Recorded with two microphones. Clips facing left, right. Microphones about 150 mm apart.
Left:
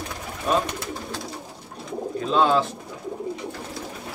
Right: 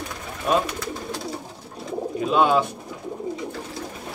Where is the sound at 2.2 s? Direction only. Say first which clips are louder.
Right 1 dB; 10° right (ahead or behind).